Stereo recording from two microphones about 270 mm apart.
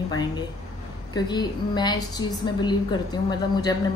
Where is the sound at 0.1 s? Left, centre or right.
Centre.